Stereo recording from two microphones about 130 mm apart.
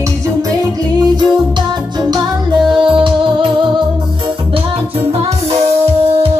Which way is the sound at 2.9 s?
40° right (ahead or behind).